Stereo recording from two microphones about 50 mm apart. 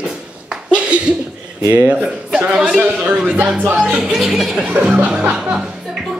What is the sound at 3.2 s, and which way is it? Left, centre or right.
Speech, right.